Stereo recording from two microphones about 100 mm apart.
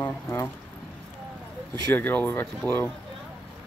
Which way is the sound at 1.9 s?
20° left (ahead or behind).